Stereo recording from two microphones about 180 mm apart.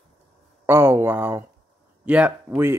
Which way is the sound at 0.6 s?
15° right (ahead or behind).